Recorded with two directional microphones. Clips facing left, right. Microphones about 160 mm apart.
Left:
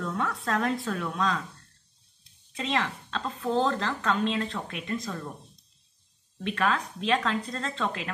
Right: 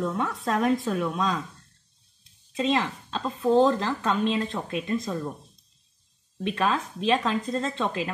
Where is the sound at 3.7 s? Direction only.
20° right (ahead or behind).